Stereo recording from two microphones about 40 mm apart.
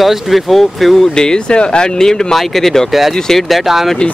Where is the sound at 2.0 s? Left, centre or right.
Centre.